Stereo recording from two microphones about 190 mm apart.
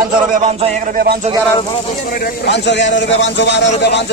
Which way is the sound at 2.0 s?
50° left (ahead or behind).